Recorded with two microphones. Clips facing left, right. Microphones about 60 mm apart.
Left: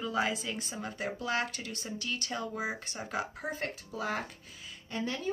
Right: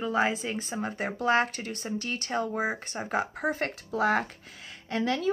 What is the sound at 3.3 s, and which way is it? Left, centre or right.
Speech, right.